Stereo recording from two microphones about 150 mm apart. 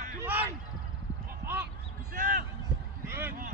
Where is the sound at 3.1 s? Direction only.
15° right (ahead or behind).